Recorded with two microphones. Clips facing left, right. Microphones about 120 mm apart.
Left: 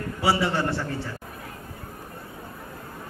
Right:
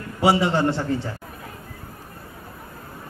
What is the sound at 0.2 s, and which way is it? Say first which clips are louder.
Speech: right 5 dB; 20° right (ahead or behind).